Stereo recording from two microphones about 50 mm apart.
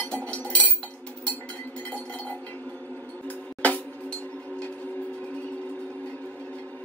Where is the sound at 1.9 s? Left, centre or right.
Left.